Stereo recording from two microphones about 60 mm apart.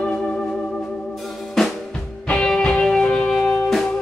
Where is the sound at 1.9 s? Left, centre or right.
Centre.